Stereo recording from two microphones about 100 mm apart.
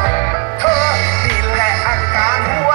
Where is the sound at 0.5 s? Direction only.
5° left (ahead or behind).